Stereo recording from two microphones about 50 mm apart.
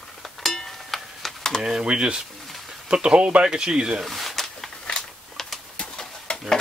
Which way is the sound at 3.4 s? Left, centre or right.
Centre.